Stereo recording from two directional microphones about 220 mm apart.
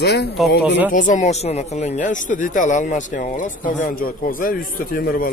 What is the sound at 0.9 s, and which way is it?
Speech, 35° left (ahead or behind).